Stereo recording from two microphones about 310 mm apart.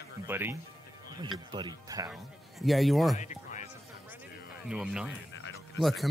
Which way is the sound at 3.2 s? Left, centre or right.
Left.